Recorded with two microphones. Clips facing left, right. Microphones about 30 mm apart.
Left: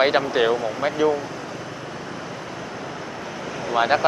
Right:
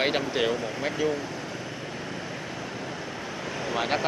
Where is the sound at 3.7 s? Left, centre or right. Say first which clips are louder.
Left 9 dB; centre.